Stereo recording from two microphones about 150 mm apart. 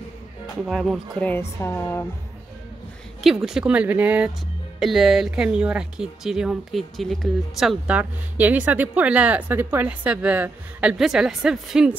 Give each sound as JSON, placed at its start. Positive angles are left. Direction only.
{"t": 0.7, "sound": "speech", "side_deg": 0}
{"t": 1.2, "sound": "speech", "side_deg": 15}
{"t": 3.4, "sound": "speech", "side_deg": -5}